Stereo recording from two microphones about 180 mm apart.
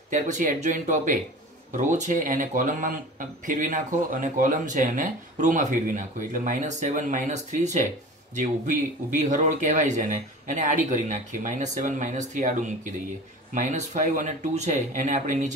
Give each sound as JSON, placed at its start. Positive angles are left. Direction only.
{"t": 0.1, "sound": "speech", "side_deg": -45}